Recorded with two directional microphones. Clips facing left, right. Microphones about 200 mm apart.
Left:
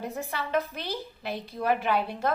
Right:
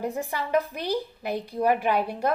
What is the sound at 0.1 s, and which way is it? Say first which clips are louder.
A woman's voice: right 3 dB; 15° right (ahead or behind).